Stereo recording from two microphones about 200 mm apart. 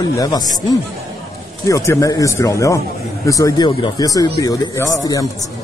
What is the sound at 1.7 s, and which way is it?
Speech, 15° left (ahead or behind).